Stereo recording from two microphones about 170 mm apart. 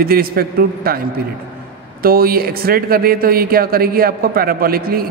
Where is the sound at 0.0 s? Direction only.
60° right (ahead or behind).